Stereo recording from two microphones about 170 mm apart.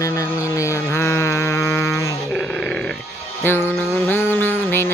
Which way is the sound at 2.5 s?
5° left (ahead or behind).